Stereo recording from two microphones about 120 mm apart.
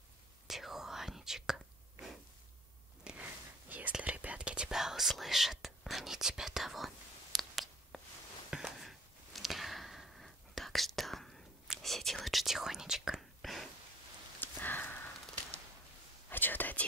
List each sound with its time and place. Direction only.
0.5 s whispering: centre (ahead or behind)
7.3 s a sound: centre (ahead or behind)
14.4 s sniff: 15° left (ahead or behind)
16.3 s whispering: 15° left (ahead or behind)